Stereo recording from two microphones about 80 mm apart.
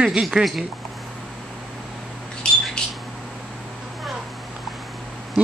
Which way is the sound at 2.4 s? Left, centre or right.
Centre.